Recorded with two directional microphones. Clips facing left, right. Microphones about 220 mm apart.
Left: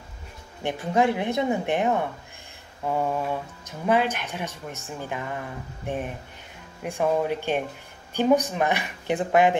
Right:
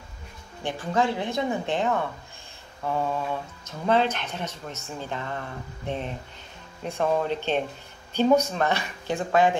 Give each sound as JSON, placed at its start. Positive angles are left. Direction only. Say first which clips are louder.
{"t": 0.7, "sound": "a woman's voice", "louder": "left 3 dB", "side_deg": 20}